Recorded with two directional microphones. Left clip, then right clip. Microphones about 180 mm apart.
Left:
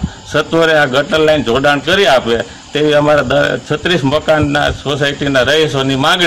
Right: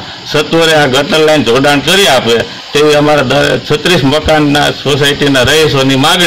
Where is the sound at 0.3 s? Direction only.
15° right (ahead or behind).